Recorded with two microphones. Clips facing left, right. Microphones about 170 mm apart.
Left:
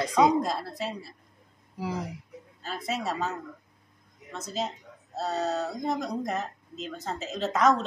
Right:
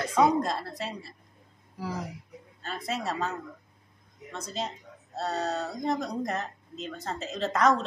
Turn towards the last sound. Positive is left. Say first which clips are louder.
# left 1 dB
turn(degrees=0)  # may be behind; listen again after turning